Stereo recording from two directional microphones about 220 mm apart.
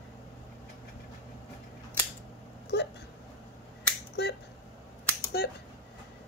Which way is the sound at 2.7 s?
50° left (ahead or behind).